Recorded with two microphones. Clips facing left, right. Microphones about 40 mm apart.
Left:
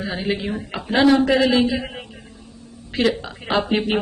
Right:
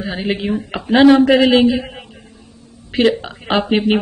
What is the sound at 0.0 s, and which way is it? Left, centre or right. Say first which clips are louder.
A man's voice: right 3 dB; centre.